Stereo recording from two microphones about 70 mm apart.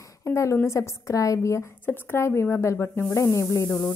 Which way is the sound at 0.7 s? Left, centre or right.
Left.